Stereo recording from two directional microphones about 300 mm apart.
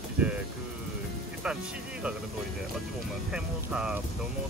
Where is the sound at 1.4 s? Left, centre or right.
Centre.